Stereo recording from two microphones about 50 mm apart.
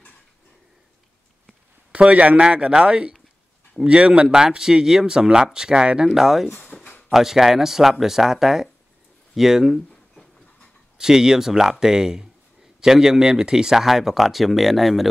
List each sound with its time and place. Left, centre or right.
1.9 s a man's voice: right
6.0 s speech: centre
6.7 s a sound: centre
7.1 s speech: centre
11.0 s speech: centre